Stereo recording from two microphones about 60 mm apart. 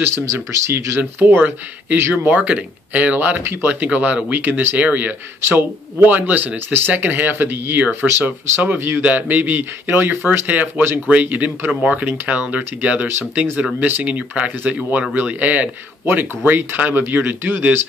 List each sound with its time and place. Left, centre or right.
0.0 s speech: right
2.3 s speech: right
4.7 s speech: right
9.0 s speech: right